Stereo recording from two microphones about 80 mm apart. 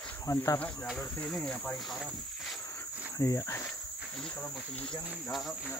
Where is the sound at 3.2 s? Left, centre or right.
Left.